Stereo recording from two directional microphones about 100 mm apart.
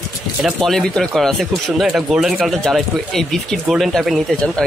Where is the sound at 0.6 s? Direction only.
5° left (ahead or behind).